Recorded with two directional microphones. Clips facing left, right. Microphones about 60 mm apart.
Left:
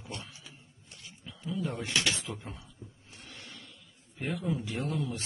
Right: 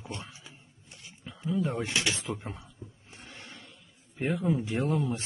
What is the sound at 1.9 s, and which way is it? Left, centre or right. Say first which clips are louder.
Speech: right 1 dB; right.